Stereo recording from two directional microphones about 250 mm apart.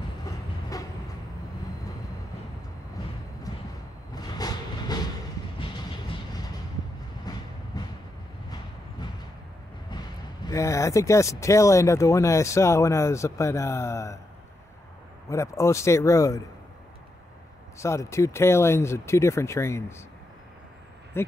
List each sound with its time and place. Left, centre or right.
0.2 s train: centre
4.1 s vehicle: centre
7.3 s train: centre
9.8 s speech: centre
15.2 s speech: centre
17.7 s speech: centre
21.2 s speech: centre